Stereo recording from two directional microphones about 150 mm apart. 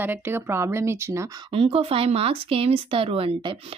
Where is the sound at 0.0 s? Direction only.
15° right (ahead or behind).